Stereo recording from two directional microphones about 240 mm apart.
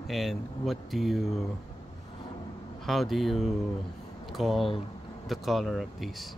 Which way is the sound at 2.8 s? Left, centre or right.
Centre.